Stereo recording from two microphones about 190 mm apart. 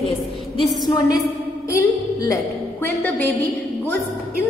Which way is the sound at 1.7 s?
15° left (ahead or behind).